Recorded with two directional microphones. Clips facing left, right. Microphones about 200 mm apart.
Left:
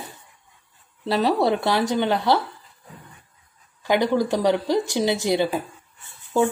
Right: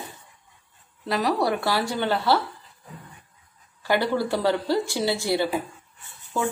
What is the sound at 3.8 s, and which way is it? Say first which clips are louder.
Speech: left 3 dB; 15° left (ahead or behind).